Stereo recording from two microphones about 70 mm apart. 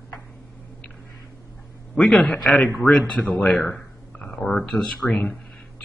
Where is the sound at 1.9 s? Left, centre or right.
Centre.